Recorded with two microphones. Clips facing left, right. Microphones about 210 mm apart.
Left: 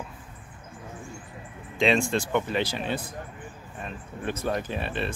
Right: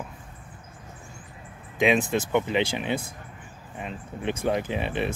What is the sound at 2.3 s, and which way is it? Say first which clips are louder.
Speech: right 4 dB; 15° right (ahead or behind).